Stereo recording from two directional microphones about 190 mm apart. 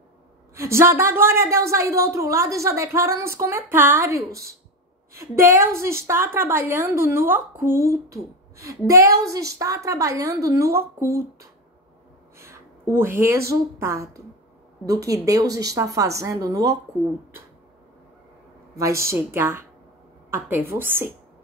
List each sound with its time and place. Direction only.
0.6 s a woman's voice: 15° right (ahead or behind)
12.4 s a woman's voice: 15° right (ahead or behind)
18.8 s a woman's voice: 15° right (ahead or behind)